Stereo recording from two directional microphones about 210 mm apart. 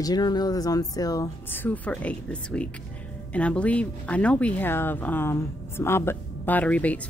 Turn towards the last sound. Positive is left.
turn(degrees=5)  # may be behind; listen again after turning